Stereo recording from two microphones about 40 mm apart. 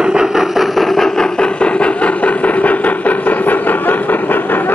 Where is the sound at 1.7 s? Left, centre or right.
Left.